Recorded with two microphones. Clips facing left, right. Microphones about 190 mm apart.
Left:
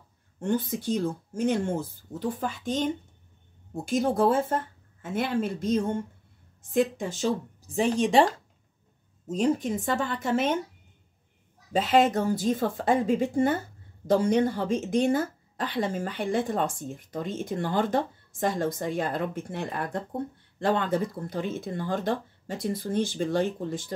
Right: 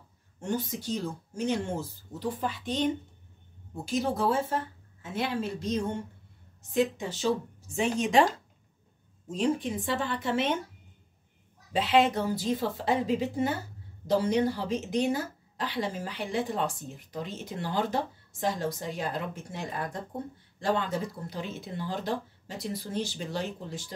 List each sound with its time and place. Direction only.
0.4 s a woman's voice: 55° left (ahead or behind); by 8.3 s 35° left (ahead or behind)
9.3 s a woman's voice: 45° left (ahead or behind)
11.7 s a woman's voice: 45° left (ahead or behind)